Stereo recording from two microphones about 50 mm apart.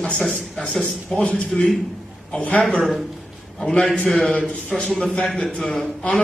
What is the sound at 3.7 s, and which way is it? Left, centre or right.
A man's voice, left.